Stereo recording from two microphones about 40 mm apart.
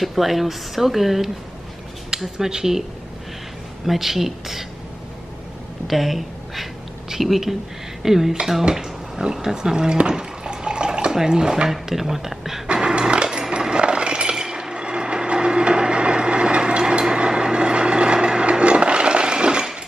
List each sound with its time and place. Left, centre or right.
0.0 s speech: centre
3.8 s speech: centre
5.9 s a sound: centre
8.0 s speech: centre
12.7 s dog: centre
13.5 s a sound: right
17.1 s wood: right